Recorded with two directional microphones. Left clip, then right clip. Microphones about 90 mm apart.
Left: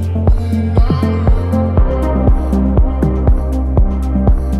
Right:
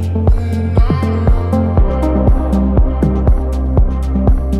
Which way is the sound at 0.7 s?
20° left (ahead or behind).